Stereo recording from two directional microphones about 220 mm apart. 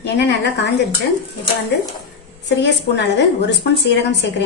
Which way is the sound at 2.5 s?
50° left (ahead or behind).